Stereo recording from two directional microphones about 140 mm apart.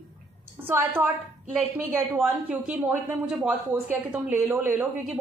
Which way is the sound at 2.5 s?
5° right (ahead or behind).